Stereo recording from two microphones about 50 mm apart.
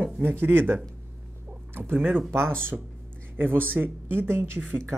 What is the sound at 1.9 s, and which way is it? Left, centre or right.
Speech, right.